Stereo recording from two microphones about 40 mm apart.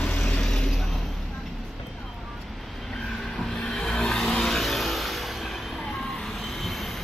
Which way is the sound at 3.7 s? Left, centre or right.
Centre.